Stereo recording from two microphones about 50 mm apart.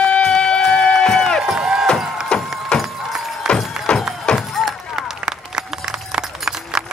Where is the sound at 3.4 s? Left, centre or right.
Centre.